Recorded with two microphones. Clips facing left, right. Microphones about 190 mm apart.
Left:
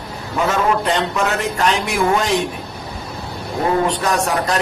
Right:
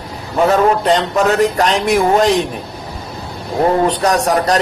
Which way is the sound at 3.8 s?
35° right (ahead or behind).